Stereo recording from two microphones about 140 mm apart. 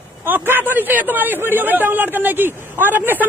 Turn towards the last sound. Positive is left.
turn(degrees=-15)  # may be behind; listen again after turning